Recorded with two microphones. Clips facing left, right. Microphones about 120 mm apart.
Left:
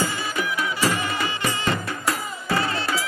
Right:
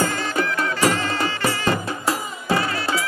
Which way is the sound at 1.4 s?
30° right (ahead or behind).